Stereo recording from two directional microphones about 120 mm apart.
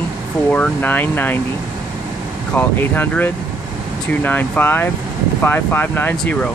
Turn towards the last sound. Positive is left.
turn(degrees=10)  # may be behind; listen again after turning